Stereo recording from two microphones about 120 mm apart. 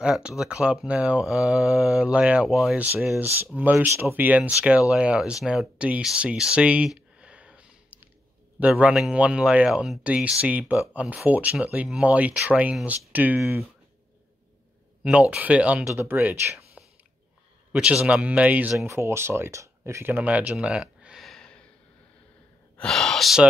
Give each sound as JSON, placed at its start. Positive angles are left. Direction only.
{"t": 0.0, "sound": "speech", "side_deg": -5}
{"t": 3.2, "sound": "speech", "side_deg": -15}
{"t": 15.0, "sound": "speech", "side_deg": -10}
{"t": 22.8, "sound": "speech", "side_deg": 5}